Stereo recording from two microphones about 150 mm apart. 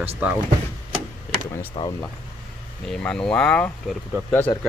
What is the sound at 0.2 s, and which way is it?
Speech, 10° right (ahead or behind).